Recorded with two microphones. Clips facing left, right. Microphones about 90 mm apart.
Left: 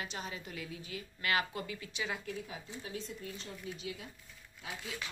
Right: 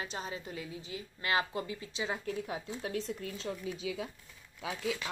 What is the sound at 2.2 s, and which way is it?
Speech, 50° right (ahead or behind).